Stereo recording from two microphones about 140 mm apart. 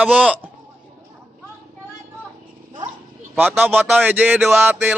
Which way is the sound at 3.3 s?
15° right (ahead or behind).